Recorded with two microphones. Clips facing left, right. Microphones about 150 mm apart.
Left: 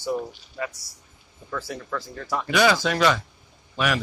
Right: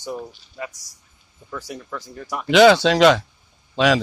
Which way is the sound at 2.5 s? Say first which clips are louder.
Right 8 dB; 80° right.